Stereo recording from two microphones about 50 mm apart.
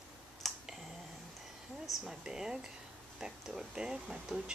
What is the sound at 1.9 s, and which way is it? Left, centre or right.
Speech, centre.